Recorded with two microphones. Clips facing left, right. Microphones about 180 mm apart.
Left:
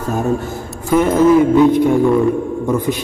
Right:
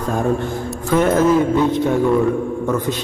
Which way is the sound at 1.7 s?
10° left (ahead or behind).